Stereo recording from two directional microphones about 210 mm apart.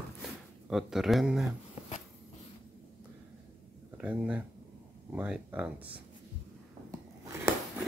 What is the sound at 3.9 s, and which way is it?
Speech, 5° right (ahead or behind).